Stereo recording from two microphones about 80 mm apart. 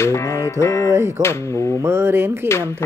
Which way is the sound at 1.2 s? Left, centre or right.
Right.